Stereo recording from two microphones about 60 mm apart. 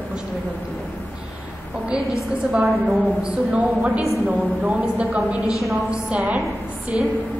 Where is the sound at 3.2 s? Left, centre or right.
Centre.